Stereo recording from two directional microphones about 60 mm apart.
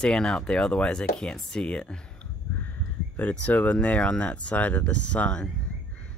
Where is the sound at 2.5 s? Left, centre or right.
Left.